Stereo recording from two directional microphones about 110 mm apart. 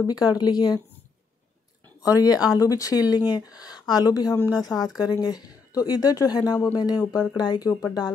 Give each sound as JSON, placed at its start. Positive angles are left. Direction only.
{"t": 0.0, "sound": "speech", "side_deg": 35}
{"t": 2.0, "sound": "speech", "side_deg": 35}